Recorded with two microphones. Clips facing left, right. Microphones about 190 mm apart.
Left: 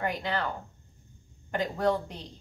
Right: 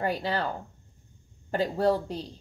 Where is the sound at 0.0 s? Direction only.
35° right (ahead or behind).